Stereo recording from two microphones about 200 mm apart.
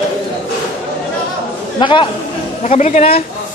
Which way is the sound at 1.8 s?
25° left (ahead or behind).